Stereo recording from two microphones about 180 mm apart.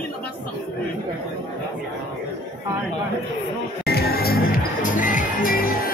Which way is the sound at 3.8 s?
60° left (ahead or behind).